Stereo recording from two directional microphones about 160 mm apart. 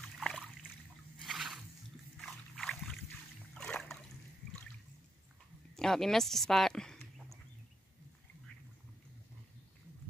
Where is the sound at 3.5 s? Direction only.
5° left (ahead or behind).